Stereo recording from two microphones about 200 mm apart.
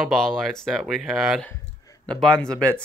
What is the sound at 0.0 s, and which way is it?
Speech, centre (ahead or behind).